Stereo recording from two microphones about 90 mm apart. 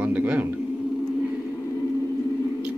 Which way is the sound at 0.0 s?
20° right (ahead or behind).